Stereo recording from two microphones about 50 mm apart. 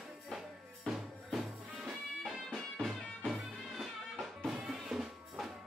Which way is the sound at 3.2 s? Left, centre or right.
Centre.